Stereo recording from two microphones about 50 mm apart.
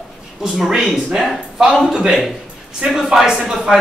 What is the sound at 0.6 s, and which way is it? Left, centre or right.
Speech, centre.